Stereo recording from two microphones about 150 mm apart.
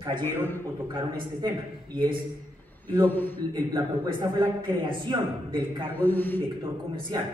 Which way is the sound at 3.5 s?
30° right (ahead or behind).